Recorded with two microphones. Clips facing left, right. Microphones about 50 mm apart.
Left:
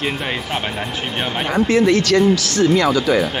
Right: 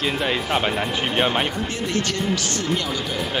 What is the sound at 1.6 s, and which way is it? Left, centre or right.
Speech, left.